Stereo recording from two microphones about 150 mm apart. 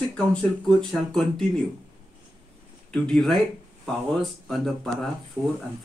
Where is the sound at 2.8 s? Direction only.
5° left (ahead or behind).